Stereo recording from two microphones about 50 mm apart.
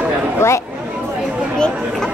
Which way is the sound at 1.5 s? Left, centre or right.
Centre.